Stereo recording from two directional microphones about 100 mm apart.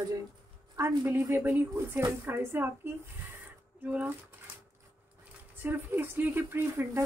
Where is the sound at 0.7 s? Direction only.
20° right (ahead or behind).